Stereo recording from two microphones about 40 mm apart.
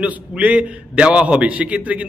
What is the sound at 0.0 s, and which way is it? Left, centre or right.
A man's voice, right.